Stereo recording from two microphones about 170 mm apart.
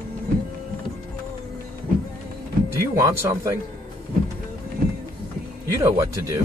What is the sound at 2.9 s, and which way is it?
Speech, 15° right (ahead or behind).